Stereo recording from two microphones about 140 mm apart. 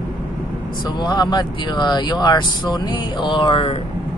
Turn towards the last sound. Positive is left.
turn(degrees=40)  # may be behind; listen again after turning